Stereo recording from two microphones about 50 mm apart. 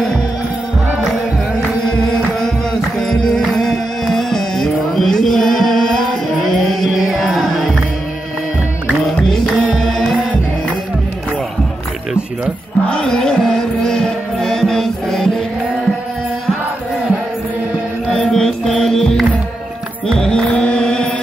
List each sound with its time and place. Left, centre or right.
1.9 s music: centre
9.3 s music: centre
12.9 s music: centre
18.1 s music: centre